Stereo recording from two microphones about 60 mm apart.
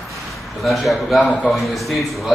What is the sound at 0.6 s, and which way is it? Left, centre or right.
Speech, centre.